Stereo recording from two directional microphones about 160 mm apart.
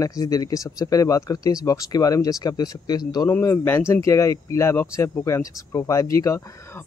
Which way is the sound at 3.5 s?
15° left (ahead or behind).